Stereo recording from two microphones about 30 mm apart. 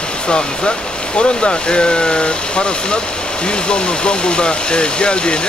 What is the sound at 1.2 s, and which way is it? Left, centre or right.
Speech, left.